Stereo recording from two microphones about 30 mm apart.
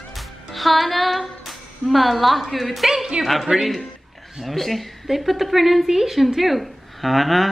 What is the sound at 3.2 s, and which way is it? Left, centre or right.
Speech, right.